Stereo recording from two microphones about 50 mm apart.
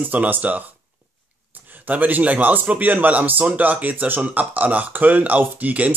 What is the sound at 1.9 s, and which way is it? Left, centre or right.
Speech, right.